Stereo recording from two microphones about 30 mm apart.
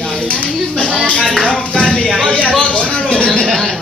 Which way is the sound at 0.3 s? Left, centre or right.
Left.